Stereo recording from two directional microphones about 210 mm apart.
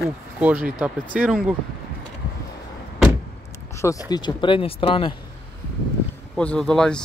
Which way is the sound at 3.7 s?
15° left (ahead or behind).